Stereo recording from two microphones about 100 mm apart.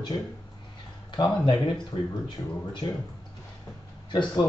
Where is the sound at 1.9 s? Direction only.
60° left (ahead or behind).